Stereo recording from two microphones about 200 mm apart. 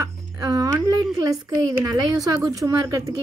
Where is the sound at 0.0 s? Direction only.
15° right (ahead or behind).